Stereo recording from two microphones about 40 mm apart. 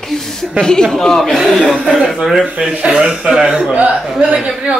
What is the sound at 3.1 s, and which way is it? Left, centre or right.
Speech, centre.